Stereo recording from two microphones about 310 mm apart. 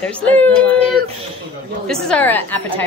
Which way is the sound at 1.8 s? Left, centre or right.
Centre.